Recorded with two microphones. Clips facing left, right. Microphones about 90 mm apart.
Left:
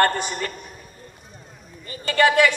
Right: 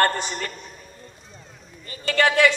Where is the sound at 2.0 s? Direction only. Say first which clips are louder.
Left 1 dB; 20° left (ahead or behind).